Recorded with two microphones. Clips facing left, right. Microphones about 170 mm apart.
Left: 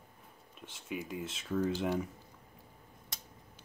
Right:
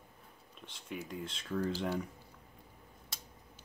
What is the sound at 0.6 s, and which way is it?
Speech, 5° left (ahead or behind).